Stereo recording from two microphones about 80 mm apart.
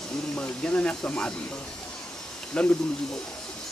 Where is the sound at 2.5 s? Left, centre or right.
Centre.